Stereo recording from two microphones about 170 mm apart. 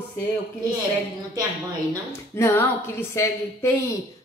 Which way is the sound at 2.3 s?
15° left (ahead or behind).